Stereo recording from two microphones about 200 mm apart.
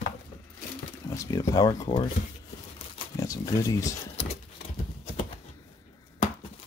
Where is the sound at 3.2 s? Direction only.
15° left (ahead or behind).